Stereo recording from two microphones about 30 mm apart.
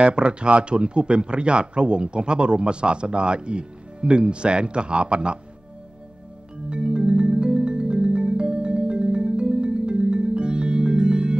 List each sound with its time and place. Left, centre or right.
0.0 s speech: right
6.7 s music: right